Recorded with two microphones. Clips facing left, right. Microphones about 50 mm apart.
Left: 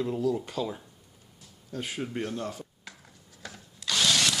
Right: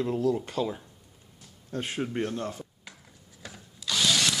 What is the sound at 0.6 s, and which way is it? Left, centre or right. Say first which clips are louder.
Speech: right 2 dB; right.